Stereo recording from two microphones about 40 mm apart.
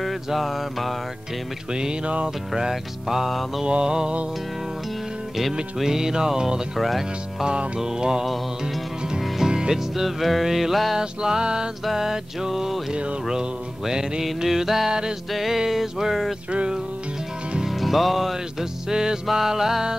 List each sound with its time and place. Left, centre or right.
0.0 s music: centre
1.7 s music: right
2.2 s music: centre
3.6 s music: right
5.8 s music: centre
6.8 s music: centre
7.4 s music: right
9.5 s music: centre
10.0 s music: centre
11.0 s music: centre
15.3 s music: centre
16.5 s music: right
17.6 s music: centre